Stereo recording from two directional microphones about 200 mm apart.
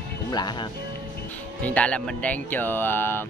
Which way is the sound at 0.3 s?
20° left (ahead or behind).